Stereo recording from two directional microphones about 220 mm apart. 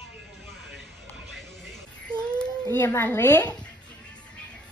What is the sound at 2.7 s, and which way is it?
Speech, 10° left (ahead or behind).